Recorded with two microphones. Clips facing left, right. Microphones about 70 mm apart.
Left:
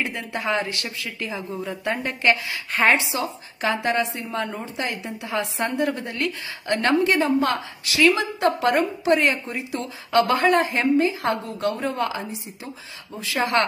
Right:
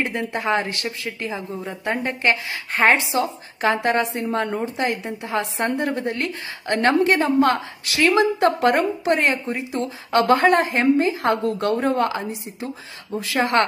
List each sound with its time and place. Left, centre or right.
0.0 s speech: right